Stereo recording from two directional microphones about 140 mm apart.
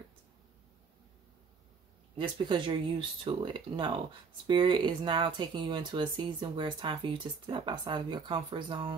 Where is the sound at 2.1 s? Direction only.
35° right (ahead or behind).